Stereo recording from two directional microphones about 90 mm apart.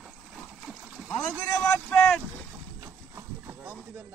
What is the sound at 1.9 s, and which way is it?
Boat, 20° left (ahead or behind).